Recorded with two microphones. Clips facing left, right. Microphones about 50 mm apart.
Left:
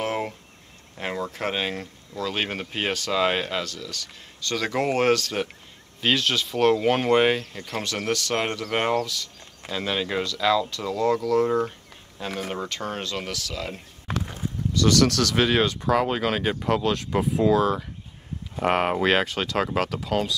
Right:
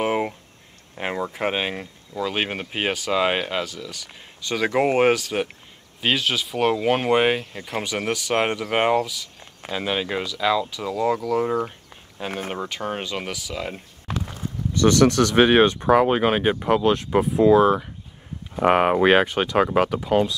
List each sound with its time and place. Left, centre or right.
0.0 s a sound: centre
0.9 s speech: centre
12.2 s speech: right
12.5 s speech: centre
14.7 s speech: right